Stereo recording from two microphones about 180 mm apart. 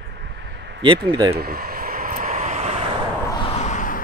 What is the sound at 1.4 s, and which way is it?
Vehicle, 55° right (ahead or behind).